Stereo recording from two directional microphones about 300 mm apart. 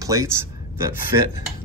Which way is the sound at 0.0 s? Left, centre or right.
Centre.